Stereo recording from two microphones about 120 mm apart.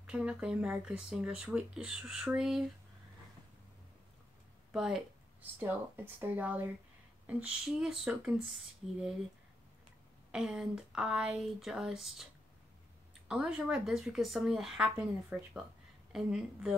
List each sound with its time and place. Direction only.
0.0 s speech: 5° right (ahead or behind)
4.7 s a sound: 5° right (ahead or behind)
5.6 s speech: 15° right (ahead or behind)
10.3 s speech: 5° right (ahead or behind)
13.3 s speech: 5° right (ahead or behind)